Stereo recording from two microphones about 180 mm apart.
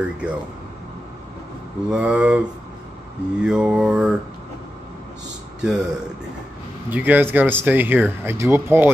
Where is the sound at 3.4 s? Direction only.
5° right (ahead or behind).